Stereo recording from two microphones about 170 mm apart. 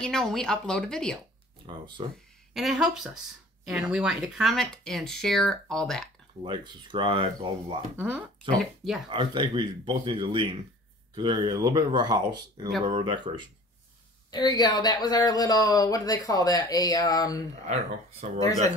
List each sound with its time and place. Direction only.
0.0 s speech: 5° left (ahead or behind)
2.0 s speech: 30° right (ahead or behind)
2.5 s speech: centre (ahead or behind)
6.4 s speech: 30° right (ahead or behind)
8.5 s speech: centre (ahead or behind)
9.1 s speech: 30° right (ahead or behind)
14.3 s speech: 25° left (ahead or behind)
18.2 s speech: 40° right (ahead or behind)